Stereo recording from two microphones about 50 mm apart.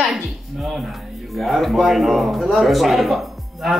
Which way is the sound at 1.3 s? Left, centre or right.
Centre.